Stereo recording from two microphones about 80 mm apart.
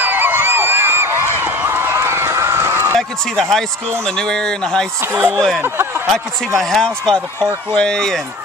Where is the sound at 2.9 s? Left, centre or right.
Centre.